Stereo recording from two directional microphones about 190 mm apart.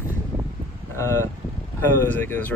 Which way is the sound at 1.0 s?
15° left (ahead or behind).